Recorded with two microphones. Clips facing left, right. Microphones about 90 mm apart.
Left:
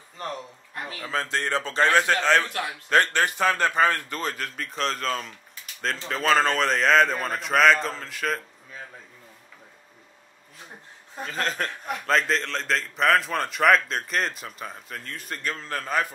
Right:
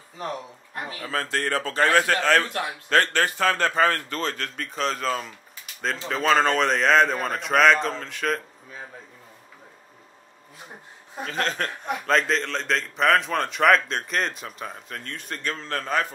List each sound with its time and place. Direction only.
0.2 s a man's voice: 5° right (ahead or behind)
1.0 s a man's voice: 20° left (ahead or behind); by 8.4 s centre (ahead or behind)
11.1 s a man's voice: centre (ahead or behind)